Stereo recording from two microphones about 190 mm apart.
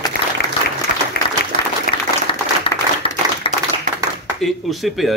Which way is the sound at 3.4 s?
30° left (ahead or behind).